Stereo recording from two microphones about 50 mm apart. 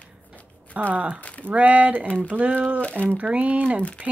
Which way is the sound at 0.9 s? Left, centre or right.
Right.